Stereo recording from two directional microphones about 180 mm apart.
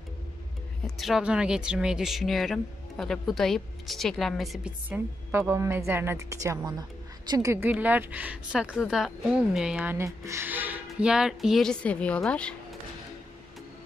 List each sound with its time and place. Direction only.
0.8 s speech: centre (ahead or behind)